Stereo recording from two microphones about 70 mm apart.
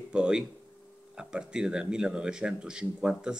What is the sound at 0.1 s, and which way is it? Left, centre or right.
A man's voice, centre.